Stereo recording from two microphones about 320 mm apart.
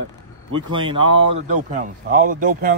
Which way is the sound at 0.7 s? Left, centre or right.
Centre.